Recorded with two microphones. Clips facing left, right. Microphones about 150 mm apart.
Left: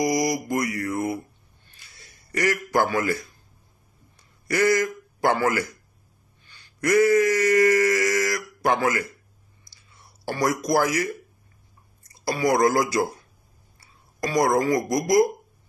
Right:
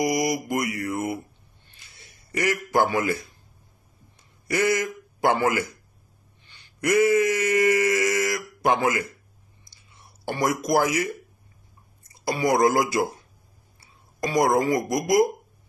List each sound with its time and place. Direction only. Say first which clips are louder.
0.0 s mantra: left 1 dB; 20° right (ahead or behind)
2.0 s a man's voice: left 1 dB; 20° right (ahead or behind)
6.5 s a sound: left 1 dB; 20° right (ahead or behind)
8.6 s speech: even; 15° right (ahead or behind)
12.0 s a sound: left 1 dB; 20° right (ahead or behind)
12.6 s mantra: even; 20° right (ahead or behind)
13.7 s speech: even; 20° right (ahead or behind)